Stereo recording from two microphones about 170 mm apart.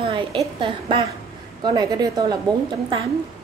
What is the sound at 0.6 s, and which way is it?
A woman's voice, 30° right (ahead or behind).